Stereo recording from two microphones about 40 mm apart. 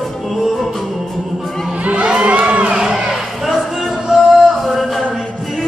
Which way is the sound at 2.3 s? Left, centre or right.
Right.